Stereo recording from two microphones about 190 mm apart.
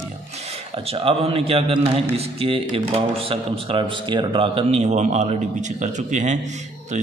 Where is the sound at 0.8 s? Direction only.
30° right (ahead or behind).